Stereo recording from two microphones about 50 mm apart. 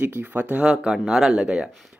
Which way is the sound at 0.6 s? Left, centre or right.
Centre.